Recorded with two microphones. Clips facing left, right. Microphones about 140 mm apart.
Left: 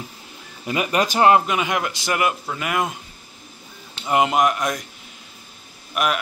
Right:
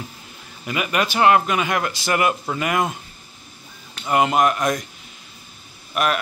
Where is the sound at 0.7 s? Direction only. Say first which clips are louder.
Left 2 dB; 35° left (ahead or behind).